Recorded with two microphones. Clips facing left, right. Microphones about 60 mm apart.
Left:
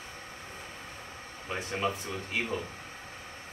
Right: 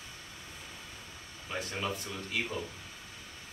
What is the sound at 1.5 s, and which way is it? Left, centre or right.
Speech, left.